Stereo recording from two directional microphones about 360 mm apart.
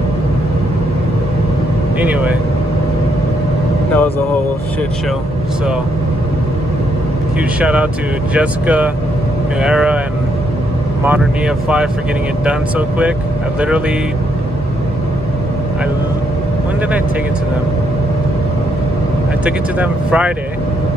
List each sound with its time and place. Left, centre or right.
2.0 s speech: centre
7.6 s speech: centre
11.1 s speech: centre
19.4 s speech: centre